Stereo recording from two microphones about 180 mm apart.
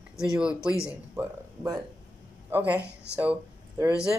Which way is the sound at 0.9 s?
15° right (ahead or behind).